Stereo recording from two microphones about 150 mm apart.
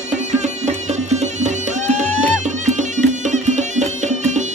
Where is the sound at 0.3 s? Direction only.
50° right (ahead or behind).